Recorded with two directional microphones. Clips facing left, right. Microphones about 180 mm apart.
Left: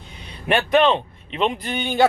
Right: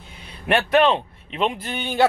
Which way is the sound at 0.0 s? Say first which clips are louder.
Left 1 dB; 5° right (ahead or behind).